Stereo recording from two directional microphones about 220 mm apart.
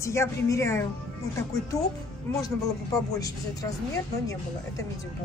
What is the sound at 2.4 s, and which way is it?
A woman's voice, 15° left (ahead or behind).